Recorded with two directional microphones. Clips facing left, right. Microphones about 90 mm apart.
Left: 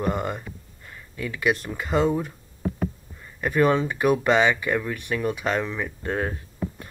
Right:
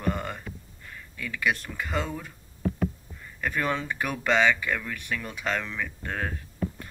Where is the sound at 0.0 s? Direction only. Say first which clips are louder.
Left 4 dB; 20° left (ahead or behind).